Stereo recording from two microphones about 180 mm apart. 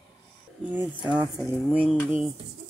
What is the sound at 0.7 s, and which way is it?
Speech, 10° right (ahead or behind).